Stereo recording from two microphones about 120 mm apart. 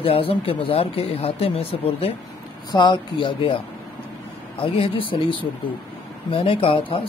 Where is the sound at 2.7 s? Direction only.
40° left (ahead or behind).